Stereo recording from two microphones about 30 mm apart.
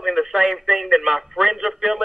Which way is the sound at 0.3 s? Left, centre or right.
Right.